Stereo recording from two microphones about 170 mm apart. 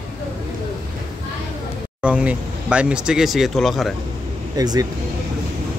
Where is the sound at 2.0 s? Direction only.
10° right (ahead or behind).